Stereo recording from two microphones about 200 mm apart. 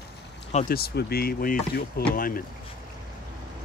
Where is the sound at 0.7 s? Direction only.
55° left (ahead or behind).